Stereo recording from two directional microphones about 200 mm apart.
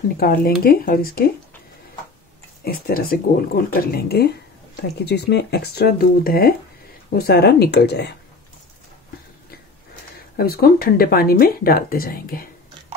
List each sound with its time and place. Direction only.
0.2 s speech: 50° left (ahead or behind)
2.6 s speech: 50° left (ahead or behind)
10.1 s speech: 50° left (ahead or behind)